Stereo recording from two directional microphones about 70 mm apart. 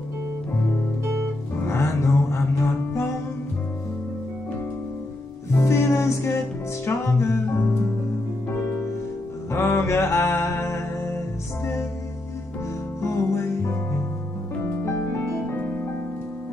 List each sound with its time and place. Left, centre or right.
1.7 s music: left
5.6 s music: left
9.5 s music: left
13.0 s music: left
14.6 s music: left